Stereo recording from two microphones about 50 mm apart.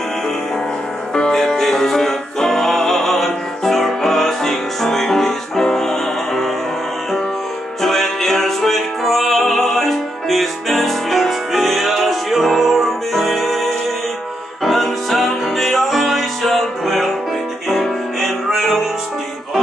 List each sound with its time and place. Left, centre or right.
1.1 s music: centre
7.8 s music: centre